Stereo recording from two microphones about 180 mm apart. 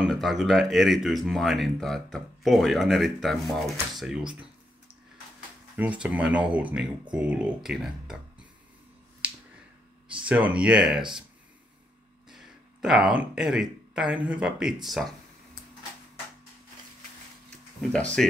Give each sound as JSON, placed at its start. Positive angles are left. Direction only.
{"t": 0.1, "sound": "speech", "side_deg": 0}
{"t": 5.8, "sound": "speech", "side_deg": -10}
{"t": 10.2, "sound": "speech", "side_deg": -5}
{"t": 12.3, "sound": "speech", "side_deg": 0}
{"t": 18.2, "sound": "speech", "side_deg": 0}